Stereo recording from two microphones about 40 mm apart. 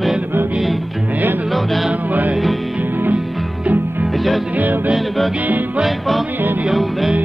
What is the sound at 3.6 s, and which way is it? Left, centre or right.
Music, right.